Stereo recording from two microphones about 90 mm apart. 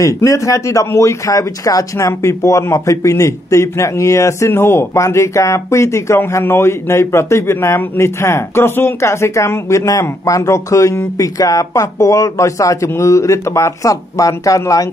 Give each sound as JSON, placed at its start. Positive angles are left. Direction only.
{"t": 0.0, "sound": "speech", "side_deg": 35}